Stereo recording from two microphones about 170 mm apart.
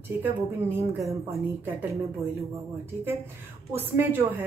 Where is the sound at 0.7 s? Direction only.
15° right (ahead or behind).